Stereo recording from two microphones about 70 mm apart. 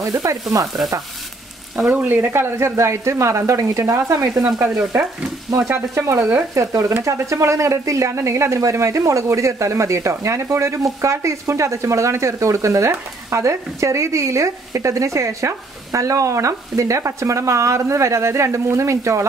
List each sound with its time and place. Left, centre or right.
0.0 s sizzle: right
2.0 s speech: right
5.9 s speech: right
6.5 s speech: right